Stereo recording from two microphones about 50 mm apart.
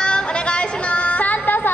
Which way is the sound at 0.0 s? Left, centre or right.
Centre.